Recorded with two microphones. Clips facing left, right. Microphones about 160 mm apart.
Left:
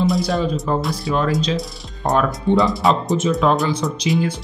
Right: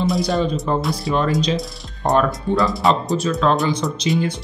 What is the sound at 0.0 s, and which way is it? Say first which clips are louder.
Speech: even; centre (ahead or behind).